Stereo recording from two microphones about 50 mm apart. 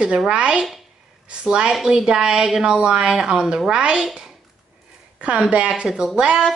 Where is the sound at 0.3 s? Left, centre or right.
Centre.